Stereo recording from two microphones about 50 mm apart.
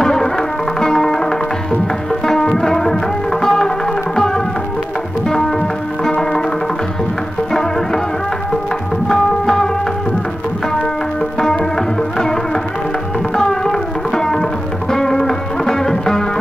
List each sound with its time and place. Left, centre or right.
0.0 s music: centre
9.1 s music: centre
13.4 s music: centre